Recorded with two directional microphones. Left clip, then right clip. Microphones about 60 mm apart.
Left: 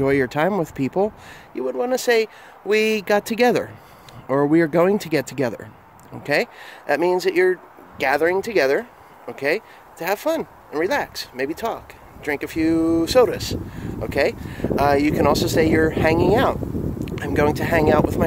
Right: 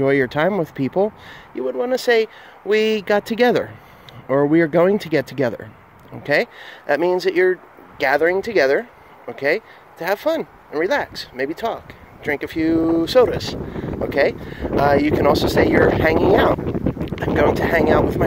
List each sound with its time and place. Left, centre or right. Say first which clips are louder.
0.0 s speech: right 2 dB; left